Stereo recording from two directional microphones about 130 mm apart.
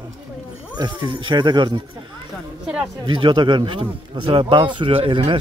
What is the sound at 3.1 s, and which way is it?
Speech, 40° right (ahead or behind).